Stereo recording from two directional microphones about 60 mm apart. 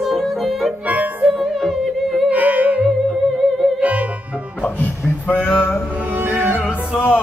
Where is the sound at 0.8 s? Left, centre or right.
Right.